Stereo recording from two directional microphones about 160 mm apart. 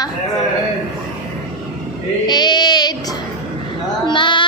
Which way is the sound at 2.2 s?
25° left (ahead or behind).